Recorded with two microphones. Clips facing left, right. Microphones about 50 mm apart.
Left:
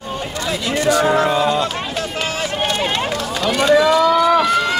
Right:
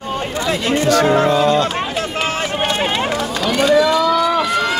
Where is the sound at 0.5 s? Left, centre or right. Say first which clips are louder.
Right 3 dB; right.